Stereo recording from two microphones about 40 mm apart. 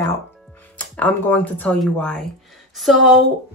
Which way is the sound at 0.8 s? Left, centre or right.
Left.